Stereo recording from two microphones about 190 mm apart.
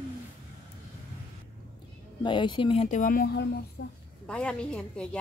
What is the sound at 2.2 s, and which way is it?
Speech, 25° left (ahead or behind).